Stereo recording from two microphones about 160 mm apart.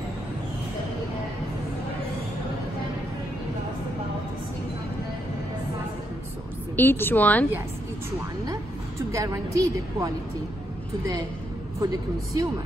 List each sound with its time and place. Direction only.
6.8 s a woman's voice: 15° left (ahead or behind)
9.1 s a woman's voice: 20° right (ahead or behind)
11.8 s a woman's voice: 25° right (ahead or behind)